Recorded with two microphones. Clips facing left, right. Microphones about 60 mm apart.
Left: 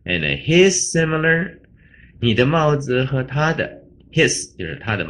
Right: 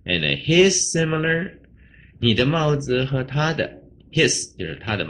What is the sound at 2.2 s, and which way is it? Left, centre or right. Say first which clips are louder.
Speech: left 3 dB; left.